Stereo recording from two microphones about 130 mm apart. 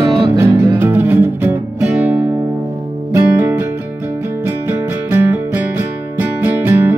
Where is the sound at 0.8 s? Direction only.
15° right (ahead or behind).